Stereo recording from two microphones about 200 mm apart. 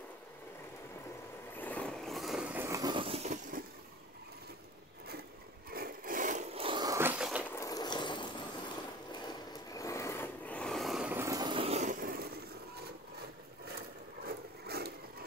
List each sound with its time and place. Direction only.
1.6 s vehicle: 5° left (ahead or behind); by 3.6 s 35° right (ahead or behind)
5.7 s a sound: 50° right (ahead or behind); by 7.4 s 5° right (ahead or behind)
7.5 s ratchet: 15° left (ahead or behind)
9.1 s vehicle: 20° left (ahead or behind); by 12.4 s 50° right (ahead or behind)
14.2 s vehicle: 50° right (ahead or behind)